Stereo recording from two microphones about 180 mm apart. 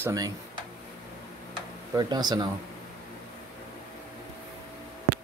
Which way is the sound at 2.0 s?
20° right (ahead or behind).